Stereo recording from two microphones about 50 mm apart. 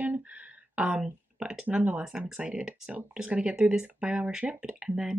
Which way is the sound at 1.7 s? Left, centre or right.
Right.